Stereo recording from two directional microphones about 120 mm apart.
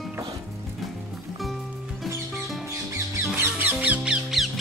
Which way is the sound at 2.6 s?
20° right (ahead or behind).